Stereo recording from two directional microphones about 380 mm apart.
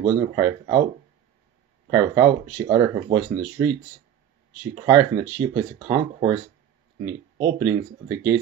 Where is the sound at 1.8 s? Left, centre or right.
Centre.